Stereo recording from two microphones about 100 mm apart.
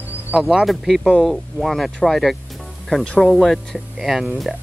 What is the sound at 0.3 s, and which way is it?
Speech, 15° right (ahead or behind).